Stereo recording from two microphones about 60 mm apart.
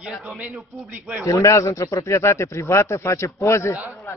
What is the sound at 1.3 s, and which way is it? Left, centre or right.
Speech, left.